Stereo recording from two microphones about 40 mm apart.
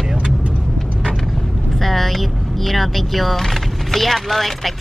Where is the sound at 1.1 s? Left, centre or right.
Centre.